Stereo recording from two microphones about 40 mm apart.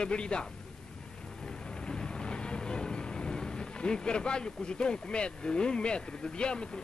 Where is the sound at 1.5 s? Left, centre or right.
Left.